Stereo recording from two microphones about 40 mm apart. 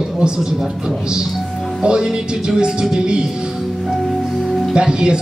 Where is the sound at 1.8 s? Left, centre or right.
Right.